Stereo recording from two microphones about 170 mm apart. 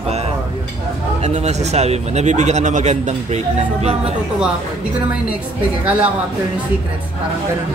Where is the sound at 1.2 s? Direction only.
40° right (ahead or behind).